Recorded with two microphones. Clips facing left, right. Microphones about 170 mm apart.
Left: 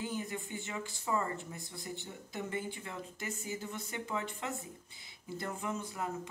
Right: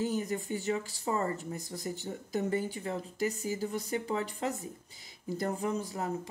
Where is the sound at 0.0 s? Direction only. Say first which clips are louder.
Right 7 dB; 40° right (ahead or behind).